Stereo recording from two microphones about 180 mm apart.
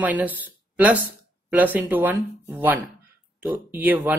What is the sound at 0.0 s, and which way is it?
Speech, 10° right (ahead or behind).